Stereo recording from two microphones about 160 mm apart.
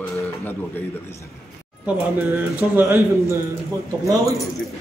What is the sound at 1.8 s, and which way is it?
Speech, 10° right (ahead or behind).